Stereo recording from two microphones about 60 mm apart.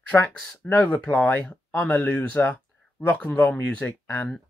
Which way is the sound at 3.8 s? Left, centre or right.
Left.